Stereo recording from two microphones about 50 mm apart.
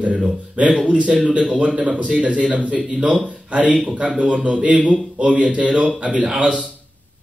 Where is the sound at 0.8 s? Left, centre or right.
Right.